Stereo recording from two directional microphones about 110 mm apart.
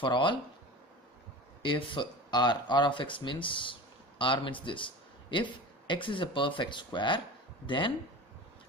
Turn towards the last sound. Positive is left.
turn(degrees=50)  # may be behind; listen again after turning